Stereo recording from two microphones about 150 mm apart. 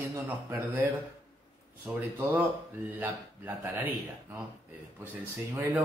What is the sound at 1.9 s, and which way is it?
Speech, 10° right (ahead or behind).